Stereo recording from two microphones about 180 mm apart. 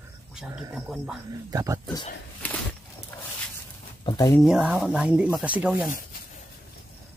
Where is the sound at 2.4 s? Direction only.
10° left (ahead or behind).